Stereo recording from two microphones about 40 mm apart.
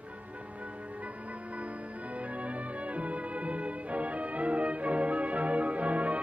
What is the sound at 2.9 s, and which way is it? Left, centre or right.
Music, right.